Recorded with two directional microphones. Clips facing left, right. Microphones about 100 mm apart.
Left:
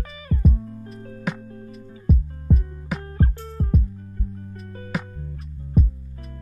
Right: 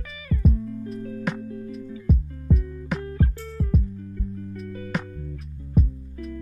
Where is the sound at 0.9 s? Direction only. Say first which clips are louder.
Right 6 dB; 35° left (ahead or behind).